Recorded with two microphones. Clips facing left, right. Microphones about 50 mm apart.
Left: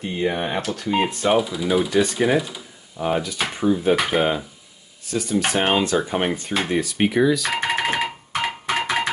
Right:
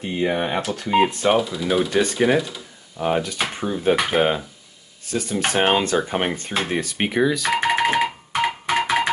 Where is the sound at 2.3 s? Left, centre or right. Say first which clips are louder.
Right 1 dB; centre.